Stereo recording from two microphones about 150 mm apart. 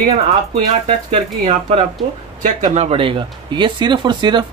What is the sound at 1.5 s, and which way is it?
Speech, 45° right (ahead or behind).